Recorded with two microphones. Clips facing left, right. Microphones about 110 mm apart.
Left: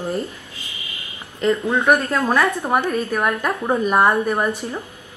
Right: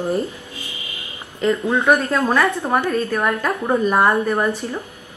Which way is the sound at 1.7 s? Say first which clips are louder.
Right 2 dB; centre (ahead or behind).